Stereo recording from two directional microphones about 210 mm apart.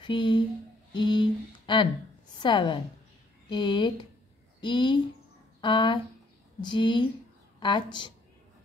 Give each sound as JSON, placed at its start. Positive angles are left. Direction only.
{"t": 0.0, "sound": "a woman's voice", "side_deg": 20}